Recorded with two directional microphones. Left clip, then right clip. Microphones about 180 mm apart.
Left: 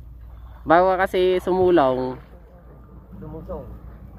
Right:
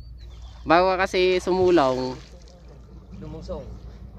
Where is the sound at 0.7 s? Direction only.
Centre (ahead or behind).